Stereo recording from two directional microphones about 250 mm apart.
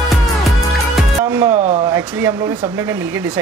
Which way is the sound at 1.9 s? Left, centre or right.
Centre.